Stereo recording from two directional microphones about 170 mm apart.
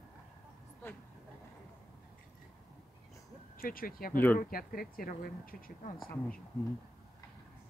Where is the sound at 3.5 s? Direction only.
60° left (ahead or behind).